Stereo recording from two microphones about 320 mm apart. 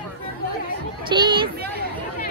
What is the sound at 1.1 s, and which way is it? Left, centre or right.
Speech, centre.